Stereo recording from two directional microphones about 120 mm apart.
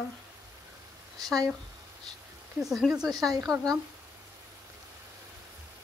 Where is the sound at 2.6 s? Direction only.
Centre (ahead or behind).